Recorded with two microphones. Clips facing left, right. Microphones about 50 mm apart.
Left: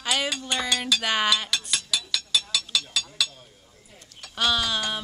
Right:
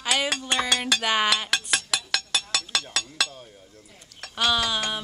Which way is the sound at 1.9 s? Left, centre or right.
Right.